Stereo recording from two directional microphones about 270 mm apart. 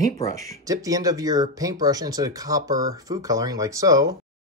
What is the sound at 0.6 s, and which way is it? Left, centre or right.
Speech, centre.